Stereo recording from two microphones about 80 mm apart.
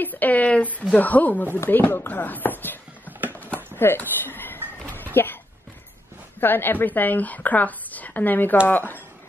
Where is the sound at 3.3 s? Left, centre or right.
Left.